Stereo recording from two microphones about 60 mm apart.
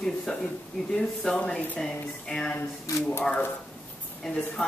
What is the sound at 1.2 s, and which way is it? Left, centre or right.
Speech, centre.